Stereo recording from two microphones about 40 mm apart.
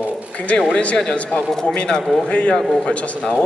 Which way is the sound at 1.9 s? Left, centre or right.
Left.